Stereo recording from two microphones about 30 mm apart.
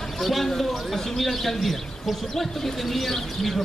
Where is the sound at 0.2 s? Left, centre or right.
Centre.